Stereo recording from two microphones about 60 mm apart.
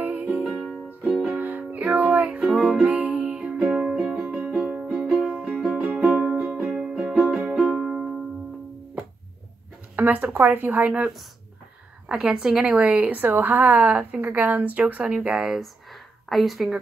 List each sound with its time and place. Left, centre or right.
0.0 s music: right
0.5 s music: centre
1.3 s music: right
2.4 s music: centre
2.8 s music: right
3.8 s music: centre
9.9 s speech: right
12.1 s a woman's voice: centre